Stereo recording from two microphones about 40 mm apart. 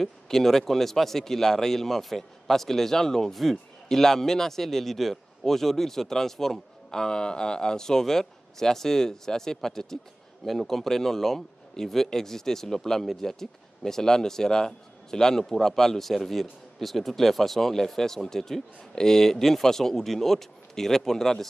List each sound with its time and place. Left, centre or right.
0.0 s speech: centre